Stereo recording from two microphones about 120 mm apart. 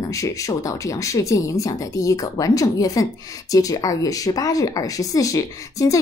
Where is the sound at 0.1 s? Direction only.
25° left (ahead or behind).